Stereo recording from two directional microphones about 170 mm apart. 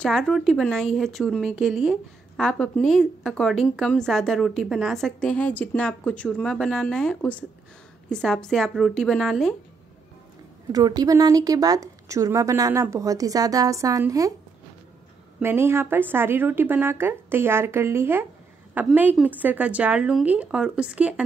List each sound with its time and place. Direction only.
0.0 s a woman's voice: centre (ahead or behind)
10.7 s a woman's voice: 20° right (ahead or behind)
15.4 s speech: 15° right (ahead or behind)